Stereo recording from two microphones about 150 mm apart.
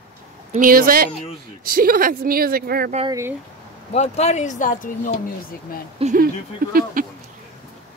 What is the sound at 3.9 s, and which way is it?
Speech, 45° left (ahead or behind).